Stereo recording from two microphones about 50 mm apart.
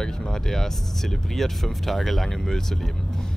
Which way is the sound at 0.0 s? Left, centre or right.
Centre.